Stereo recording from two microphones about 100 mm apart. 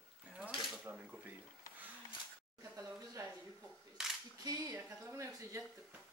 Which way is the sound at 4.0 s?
5° right (ahead or behind).